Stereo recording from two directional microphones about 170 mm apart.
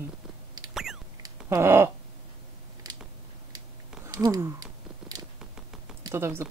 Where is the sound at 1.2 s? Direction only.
15° right (ahead or behind).